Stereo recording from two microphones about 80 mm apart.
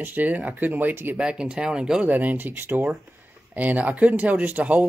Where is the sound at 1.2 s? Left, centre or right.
Centre.